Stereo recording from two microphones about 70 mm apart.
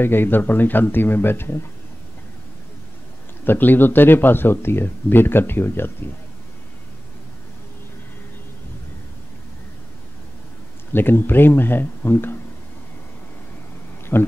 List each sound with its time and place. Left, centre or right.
0.0 s speech: left
3.4 s speech: left
10.9 s speech: left
14.1 s speech: left